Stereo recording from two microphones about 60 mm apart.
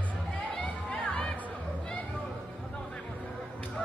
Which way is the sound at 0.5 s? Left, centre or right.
Centre.